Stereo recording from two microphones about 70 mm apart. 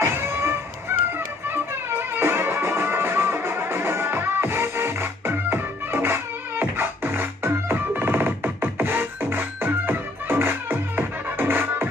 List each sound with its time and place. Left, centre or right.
0.0 s music: right